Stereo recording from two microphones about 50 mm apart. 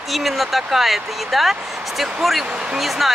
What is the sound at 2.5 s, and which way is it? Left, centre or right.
Speech, centre.